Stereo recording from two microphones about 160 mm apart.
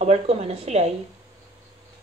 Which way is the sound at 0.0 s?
40° right (ahead or behind).